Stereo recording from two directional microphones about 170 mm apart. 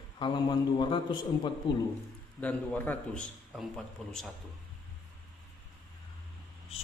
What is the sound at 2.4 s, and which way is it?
A man's voice, 10° left (ahead or behind).